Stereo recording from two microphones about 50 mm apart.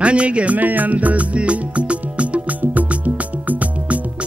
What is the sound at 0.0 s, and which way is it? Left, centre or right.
Music, right.